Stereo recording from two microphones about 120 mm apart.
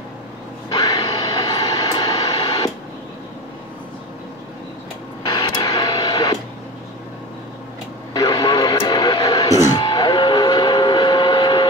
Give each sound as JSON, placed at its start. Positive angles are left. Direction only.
{"t": 0.7, "sound": "vehicle", "side_deg": 30}
{"t": 2.3, "sound": "radio", "side_deg": 40}
{"t": 5.3, "sound": "music", "side_deg": 35}
{"t": 8.1, "sound": "radio", "side_deg": 30}
{"t": 9.8, "sound": "vehicle", "side_deg": 35}